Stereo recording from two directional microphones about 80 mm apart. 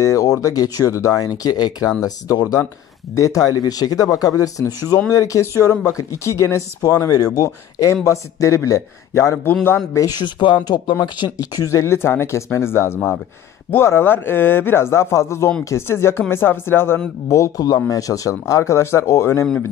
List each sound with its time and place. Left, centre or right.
0.0 s speech: left
9.5 s speech: left
9.9 s speech: left
10.2 s speech: left
11.7 s speech: left
17.3 s speech: left